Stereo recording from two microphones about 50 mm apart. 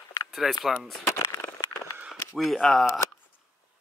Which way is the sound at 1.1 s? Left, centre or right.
Left.